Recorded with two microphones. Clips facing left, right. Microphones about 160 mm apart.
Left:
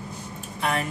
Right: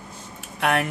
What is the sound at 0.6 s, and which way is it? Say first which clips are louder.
Speech: right 4 dB; 70° right (ahead or behind).